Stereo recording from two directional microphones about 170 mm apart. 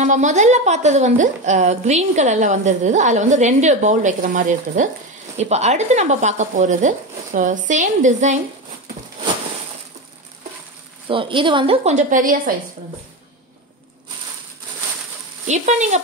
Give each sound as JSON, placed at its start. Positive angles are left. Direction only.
{"t": 0.0, "sound": "a woman's voice", "side_deg": -45}
{"t": 11.1, "sound": "a woman's voice", "side_deg": -30}
{"t": 15.4, "sound": "a woman's voice", "side_deg": -45}